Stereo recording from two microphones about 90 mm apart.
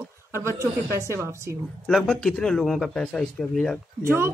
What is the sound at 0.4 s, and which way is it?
A woman's voice, 30° right (ahead or behind).